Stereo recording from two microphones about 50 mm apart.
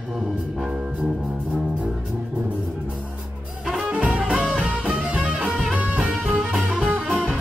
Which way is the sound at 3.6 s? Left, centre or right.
Centre.